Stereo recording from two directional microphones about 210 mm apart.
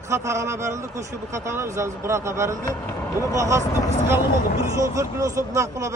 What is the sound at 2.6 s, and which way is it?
Speech, 15° left (ahead or behind).